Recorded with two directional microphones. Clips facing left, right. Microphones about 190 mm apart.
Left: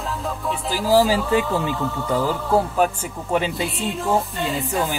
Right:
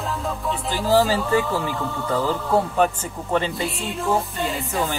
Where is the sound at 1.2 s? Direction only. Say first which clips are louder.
Left 1 dB; 15° left (ahead or behind).